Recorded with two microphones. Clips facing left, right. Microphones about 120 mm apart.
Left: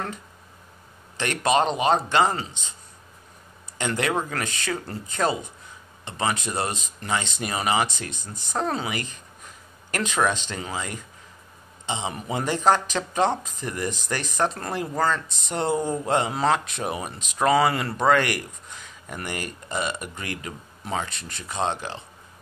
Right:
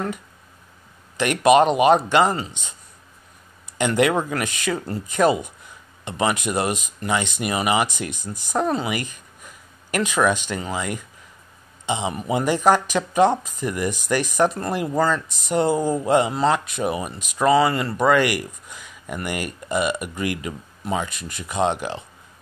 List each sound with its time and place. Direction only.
1.1 s speech: 15° right (ahead or behind)
3.7 s speech: 15° right (ahead or behind)